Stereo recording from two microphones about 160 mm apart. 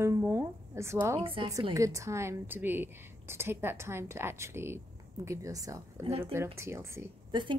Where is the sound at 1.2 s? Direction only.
35° right (ahead or behind).